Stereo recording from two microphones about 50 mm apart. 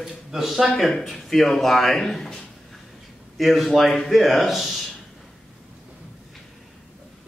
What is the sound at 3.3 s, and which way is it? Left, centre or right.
A man's voice, centre.